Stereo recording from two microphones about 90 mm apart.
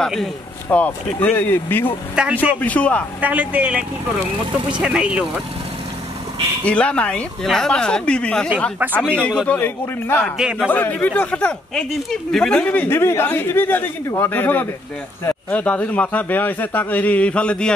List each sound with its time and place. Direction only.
0.0 s speech: centre (ahead or behind)
0.7 s speech: 15° left (ahead or behind)
2.2 s a man's voice: 10° right (ahead or behind)
2.6 s a man's voice: 15° left (ahead or behind)
3.2 s a man's voice: 15° right (ahead or behind)
6.6 s a man's voice: 15° left (ahead or behind)
9.5 s speech: 20° left (ahead or behind)
10.3 s a man's voice: 10° right (ahead or behind)
10.7 s a man's voice: 20° left (ahead or behind)
12.6 s a man's voice: 20° left (ahead or behind)